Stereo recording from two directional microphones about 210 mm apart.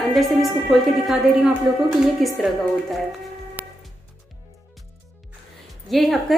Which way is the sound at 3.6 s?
5° right (ahead or behind).